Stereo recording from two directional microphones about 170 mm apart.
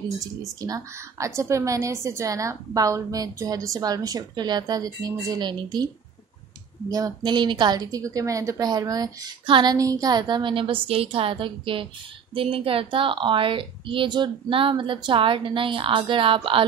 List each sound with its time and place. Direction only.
0.6 s a woman's voice: 20° right (ahead or behind)
6.9 s a woman's voice: 25° right (ahead or behind)